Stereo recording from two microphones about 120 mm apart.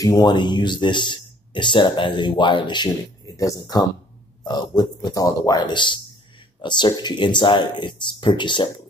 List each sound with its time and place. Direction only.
0.0 s speech: 35° left (ahead or behind)